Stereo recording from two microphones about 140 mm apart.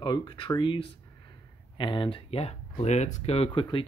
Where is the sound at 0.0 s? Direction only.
35° left (ahead or behind).